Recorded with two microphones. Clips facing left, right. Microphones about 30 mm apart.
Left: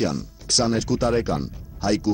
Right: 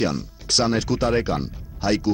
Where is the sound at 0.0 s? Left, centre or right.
Centre.